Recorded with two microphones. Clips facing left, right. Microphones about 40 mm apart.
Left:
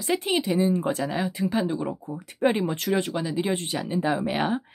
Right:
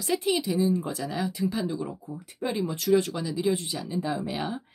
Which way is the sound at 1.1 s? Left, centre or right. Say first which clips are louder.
Left 2 dB; left.